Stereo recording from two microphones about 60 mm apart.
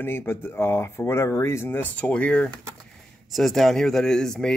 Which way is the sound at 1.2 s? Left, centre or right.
Left.